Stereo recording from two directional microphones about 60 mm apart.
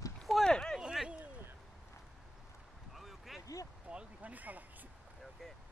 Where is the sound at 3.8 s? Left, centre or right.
Right.